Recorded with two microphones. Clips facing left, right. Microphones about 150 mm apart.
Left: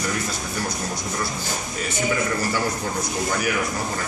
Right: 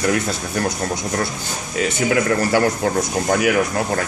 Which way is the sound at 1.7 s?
80° right.